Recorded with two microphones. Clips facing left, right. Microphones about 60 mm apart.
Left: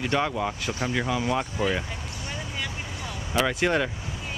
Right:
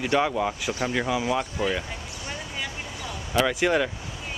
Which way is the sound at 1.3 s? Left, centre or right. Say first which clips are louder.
Even; centre.